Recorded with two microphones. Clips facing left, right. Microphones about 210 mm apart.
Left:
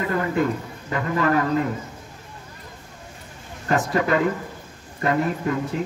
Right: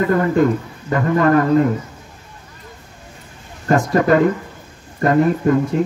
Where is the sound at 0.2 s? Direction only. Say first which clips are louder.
Right 7 dB; 45° right (ahead or behind).